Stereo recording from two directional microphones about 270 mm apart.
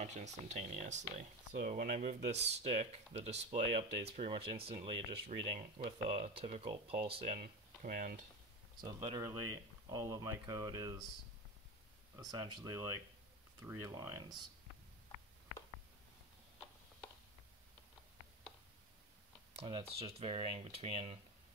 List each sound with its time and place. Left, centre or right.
0.0 s speech: right
8.8 s speech: centre
12.2 s speech: centre
19.6 s speech: centre